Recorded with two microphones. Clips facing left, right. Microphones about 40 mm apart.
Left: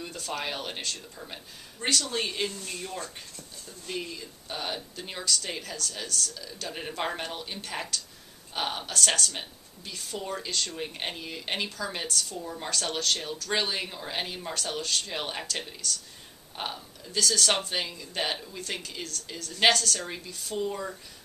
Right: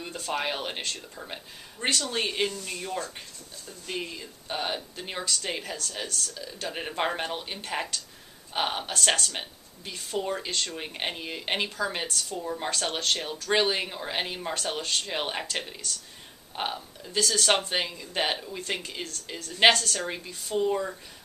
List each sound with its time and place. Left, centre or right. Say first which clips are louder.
0.0 s speech: right 3 dB; centre